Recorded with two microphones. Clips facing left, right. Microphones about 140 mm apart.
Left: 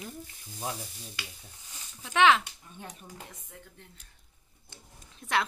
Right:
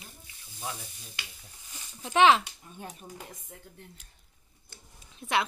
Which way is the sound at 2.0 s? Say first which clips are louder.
Right 2 dB; 30° right (ahead or behind).